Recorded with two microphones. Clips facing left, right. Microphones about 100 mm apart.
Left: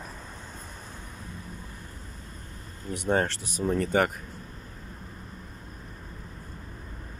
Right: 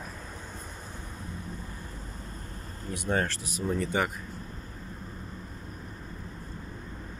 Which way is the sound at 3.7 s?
50° left (ahead or behind).